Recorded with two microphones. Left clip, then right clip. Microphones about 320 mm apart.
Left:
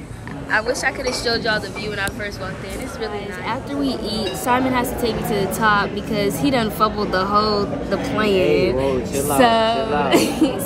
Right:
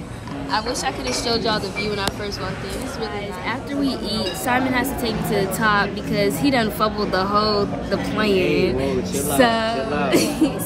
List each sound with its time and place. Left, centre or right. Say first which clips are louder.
0.8 s a woman's voice: left 2 dB; centre
3.4 s a woman's voice: left 1 dB; centre
9.1 s a woman's voice: left 3 dB; centre
9.4 s a woman's voice: left 3 dB; centre